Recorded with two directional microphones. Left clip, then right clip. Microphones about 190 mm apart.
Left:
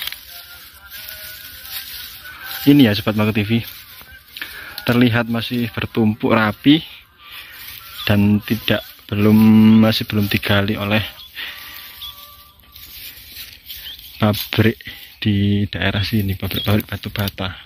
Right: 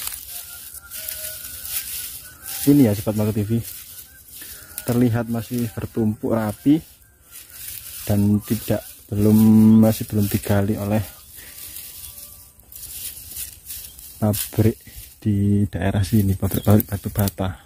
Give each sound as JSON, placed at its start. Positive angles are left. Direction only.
{"t": 2.6, "sound": "speech", "side_deg": 5}
{"t": 4.9, "sound": "speech", "side_deg": 5}
{"t": 5.9, "sound": "speech", "side_deg": 10}
{"t": 8.0, "sound": "speech", "side_deg": 5}
{"t": 8.5, "sound": "speech", "side_deg": -5}
{"t": 14.2, "sound": "speech", "side_deg": 0}
{"t": 16.0, "sound": "speech", "side_deg": -25}